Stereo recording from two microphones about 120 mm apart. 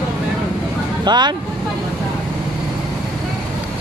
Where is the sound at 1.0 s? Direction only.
35° right (ahead or behind).